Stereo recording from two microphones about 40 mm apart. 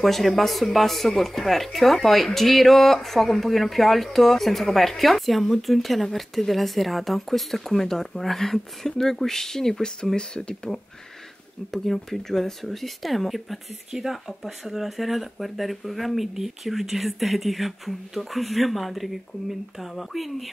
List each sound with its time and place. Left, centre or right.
0.0 s speech: centre
10.1 s speech: left
11.7 s speech: centre